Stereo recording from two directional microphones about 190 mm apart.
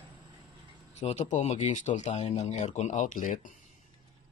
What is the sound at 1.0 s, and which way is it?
Speech, 35° left (ahead or behind).